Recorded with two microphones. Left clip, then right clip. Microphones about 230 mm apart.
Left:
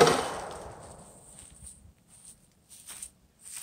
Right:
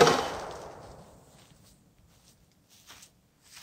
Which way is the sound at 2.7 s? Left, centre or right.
Left.